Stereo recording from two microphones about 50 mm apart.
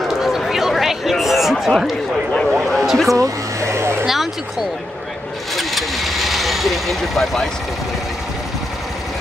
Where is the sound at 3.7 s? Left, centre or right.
Right.